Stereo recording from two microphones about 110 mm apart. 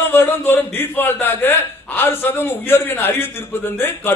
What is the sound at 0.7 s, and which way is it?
A man's voice, 20° left (ahead or behind).